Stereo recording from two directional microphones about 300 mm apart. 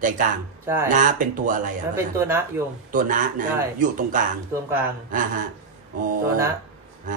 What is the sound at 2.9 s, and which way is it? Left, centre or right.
Speech, right.